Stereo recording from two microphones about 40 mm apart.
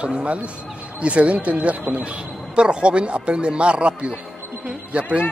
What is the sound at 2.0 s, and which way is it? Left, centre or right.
Speech, right.